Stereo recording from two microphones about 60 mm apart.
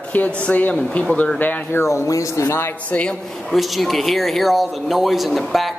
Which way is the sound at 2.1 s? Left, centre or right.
Left.